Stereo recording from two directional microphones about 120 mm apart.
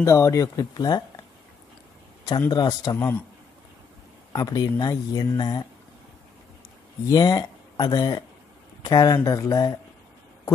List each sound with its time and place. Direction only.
0.0 s speech: 25° left (ahead or behind)
2.5 s speech: 35° left (ahead or behind)
4.3 s speech: 35° left (ahead or behind)
7.1 s speech: 35° left (ahead or behind)